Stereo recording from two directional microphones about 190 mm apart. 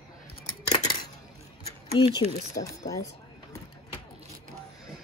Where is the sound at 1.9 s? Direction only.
30° left (ahead or behind).